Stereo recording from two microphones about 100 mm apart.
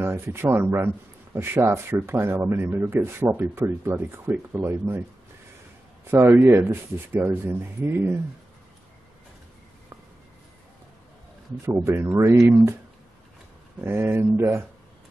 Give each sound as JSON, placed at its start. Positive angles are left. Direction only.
{"t": 0.0, "sound": "speech", "side_deg": -25}
{"t": 6.0, "sound": "speech", "side_deg": -25}
{"t": 11.6, "sound": "speech", "side_deg": -25}
{"t": 13.7, "sound": "speech", "side_deg": -25}